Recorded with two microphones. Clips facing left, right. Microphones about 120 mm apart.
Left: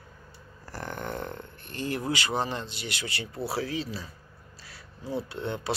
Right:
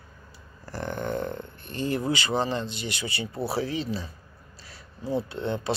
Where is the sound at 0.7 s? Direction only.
10° left (ahead or behind).